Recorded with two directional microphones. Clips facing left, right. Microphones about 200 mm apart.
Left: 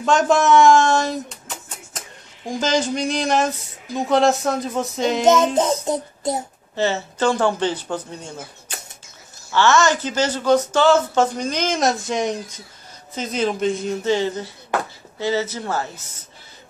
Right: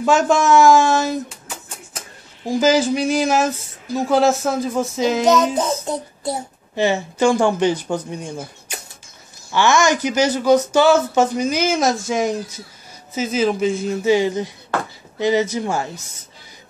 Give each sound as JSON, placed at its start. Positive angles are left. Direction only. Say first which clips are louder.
{"t": 0.0, "sound": "speech", "louder": "right 1 dB", "side_deg": 0}
{"t": 5.6, "sound": "babbling", "louder": "left 2 dB", "side_deg": 20}
{"t": 6.7, "sound": "speech", "louder": "right 3 dB", "side_deg": -15}